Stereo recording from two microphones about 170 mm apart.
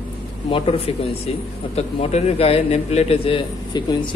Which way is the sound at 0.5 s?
35° left (ahead or behind).